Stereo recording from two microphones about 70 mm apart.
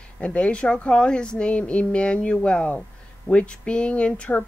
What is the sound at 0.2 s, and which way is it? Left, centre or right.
Speech, centre.